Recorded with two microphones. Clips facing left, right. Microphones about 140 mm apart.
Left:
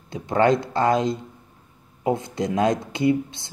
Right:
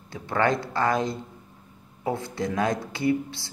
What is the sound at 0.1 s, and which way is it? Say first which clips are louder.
Speech: left 5 dB; 20° left (ahead or behind).